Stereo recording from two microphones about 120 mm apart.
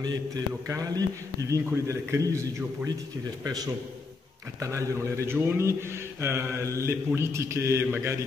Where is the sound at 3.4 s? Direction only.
35° right (ahead or behind).